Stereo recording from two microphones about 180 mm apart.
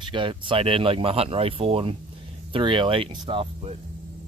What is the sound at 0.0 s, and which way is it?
Speech, 25° right (ahead or behind).